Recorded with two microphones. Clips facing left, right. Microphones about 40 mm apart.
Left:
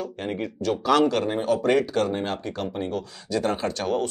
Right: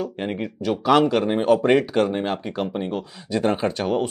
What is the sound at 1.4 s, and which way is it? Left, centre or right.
Speech, right.